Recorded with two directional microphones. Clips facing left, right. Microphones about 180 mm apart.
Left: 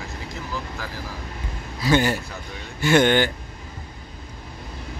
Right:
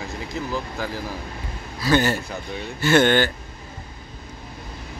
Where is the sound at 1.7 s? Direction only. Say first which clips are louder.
Even; 15° left (ahead or behind).